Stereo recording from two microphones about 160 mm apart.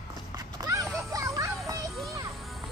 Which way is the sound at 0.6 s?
20° right (ahead or behind).